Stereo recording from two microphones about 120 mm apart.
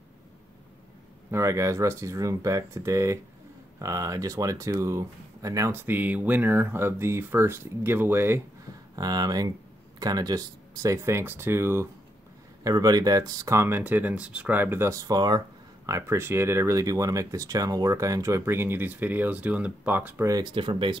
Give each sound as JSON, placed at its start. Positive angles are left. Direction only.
{"t": 1.3, "sound": "speech", "side_deg": -25}
{"t": 8.9, "sound": "speech", "side_deg": -30}
{"t": 12.6, "sound": "speech", "side_deg": -30}
{"t": 20.2, "sound": "speech", "side_deg": -30}
{"t": 20.5, "sound": "speech", "side_deg": -45}